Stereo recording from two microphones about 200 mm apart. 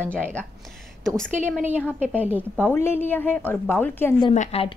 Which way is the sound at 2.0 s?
10° right (ahead or behind).